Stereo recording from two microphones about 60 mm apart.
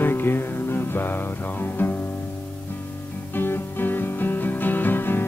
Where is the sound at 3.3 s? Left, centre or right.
Left.